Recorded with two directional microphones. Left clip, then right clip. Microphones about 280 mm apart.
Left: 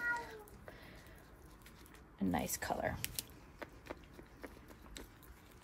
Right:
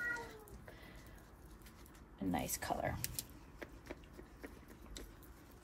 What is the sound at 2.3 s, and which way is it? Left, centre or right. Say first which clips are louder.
Typing: left 1 dB; left.